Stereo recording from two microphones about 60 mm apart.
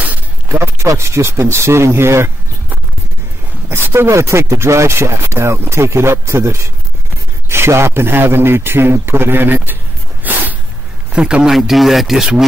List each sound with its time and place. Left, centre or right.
0.8 s speech: right
3.6 s speech: right
10.2 s a sound: right
11.1 s a man's voice: centre
11.5 s speech: centre